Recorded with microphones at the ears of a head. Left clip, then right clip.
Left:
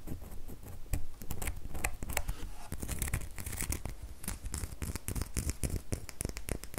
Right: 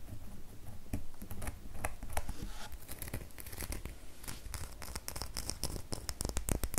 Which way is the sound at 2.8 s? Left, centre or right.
Left.